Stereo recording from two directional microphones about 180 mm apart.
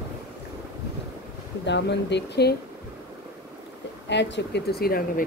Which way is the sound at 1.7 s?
75° left (ahead or behind).